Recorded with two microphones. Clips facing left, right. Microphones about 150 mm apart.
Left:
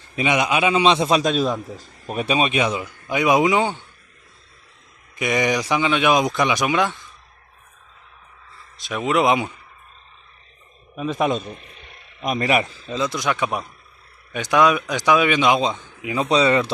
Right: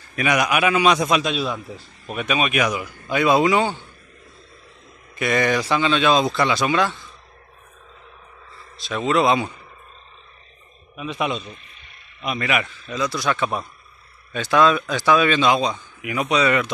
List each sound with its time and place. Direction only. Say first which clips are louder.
0.1 s a man's voice: even; 25° left (ahead or behind)
1.2 s a man's voice: left 4 dB; 45° left (ahead or behind); by 3.7 s 20° left (ahead or behind)
5.1 s a man's voice: right 1 dB; 15° left (ahead or behind)
8.8 s a man's voice: even; 15° left (ahead or behind)
11.0 s a man's voice: left 4 dB; 45° left (ahead or behind)